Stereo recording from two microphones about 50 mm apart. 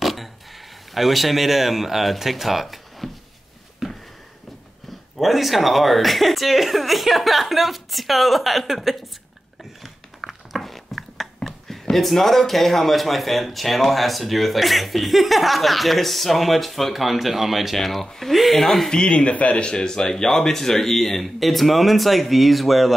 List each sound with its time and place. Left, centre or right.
0.0 s speech: centre
3.8 s a sound: centre
5.2 s speech: centre
9.8 s a sound: centre
18.9 s speech: centre
19.7 s speech: centre